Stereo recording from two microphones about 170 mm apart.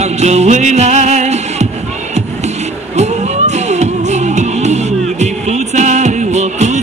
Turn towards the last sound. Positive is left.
turn(degrees=-45)  # may be behind; listen again after turning